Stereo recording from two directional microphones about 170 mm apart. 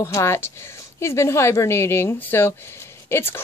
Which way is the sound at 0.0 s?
15° left (ahead or behind).